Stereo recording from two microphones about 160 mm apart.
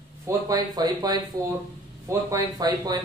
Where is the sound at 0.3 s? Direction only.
20° right (ahead or behind).